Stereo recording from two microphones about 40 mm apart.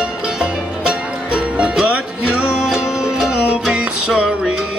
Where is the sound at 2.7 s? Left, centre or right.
Centre.